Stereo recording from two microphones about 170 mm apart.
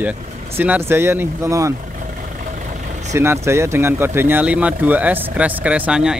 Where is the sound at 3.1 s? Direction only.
15° right (ahead or behind).